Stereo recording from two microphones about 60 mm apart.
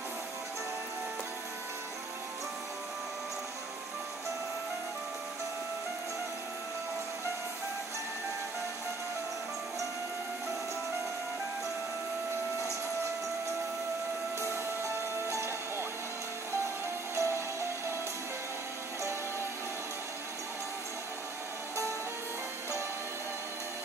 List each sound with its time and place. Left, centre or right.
14.4 s music: right
17.1 s music: right